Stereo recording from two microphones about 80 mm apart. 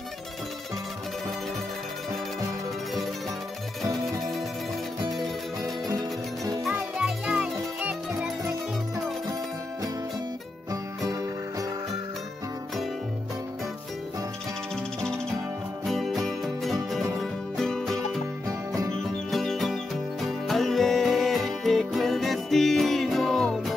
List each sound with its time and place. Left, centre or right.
3.8 s music: right
5.6 s music: right
7.0 s music: centre
10.7 s music: right
15.8 s music: centre
19.3 s music: centre